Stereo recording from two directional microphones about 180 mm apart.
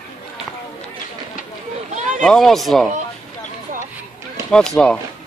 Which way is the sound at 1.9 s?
40° right (ahead or behind).